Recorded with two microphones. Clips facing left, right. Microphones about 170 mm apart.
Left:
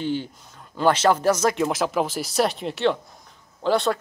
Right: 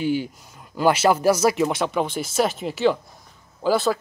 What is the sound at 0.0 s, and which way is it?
Speech, 10° right (ahead or behind).